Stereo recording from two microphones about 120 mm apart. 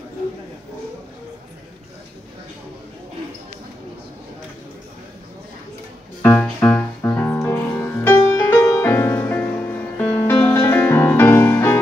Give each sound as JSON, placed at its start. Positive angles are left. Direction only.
{"t": 6.6, "sound": "music", "side_deg": 15}